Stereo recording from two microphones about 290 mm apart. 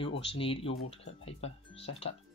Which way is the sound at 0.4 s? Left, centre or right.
Centre.